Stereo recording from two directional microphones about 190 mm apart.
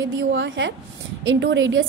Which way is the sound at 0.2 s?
70° right (ahead or behind).